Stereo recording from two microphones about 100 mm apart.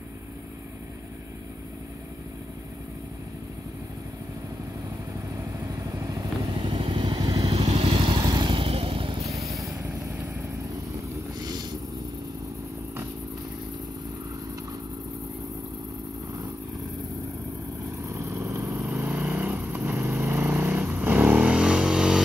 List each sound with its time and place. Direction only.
5.9 s motorcycle: 35° right (ahead or behind)
6.6 s motorcycle: 60° right (ahead or behind)
7.4 s motorcycle: 80° right; by 8.5 s 45° right (ahead or behind)
8.5 s motorcycle: 65° right (ahead or behind)
9.2 s vehicle: 30° right (ahead or behind)
11.3 s vehicle: 40° right (ahead or behind)
18.0 s vehicle: 30° right (ahead or behind)
19.0 s vehicle: 15° right (ahead or behind)